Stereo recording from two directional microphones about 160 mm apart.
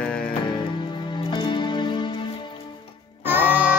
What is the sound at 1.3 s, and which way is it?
Music, 30° left (ahead or behind).